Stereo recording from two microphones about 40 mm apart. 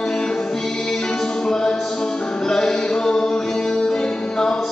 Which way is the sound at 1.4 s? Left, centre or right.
Centre.